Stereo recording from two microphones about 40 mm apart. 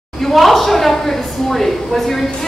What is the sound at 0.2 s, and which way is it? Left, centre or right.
A woman's voice, centre.